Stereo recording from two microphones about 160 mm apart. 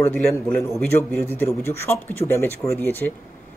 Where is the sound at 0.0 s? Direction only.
15° left (ahead or behind).